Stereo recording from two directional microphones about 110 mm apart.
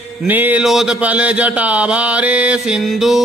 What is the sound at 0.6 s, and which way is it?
Mantra, 5° right (ahead or behind).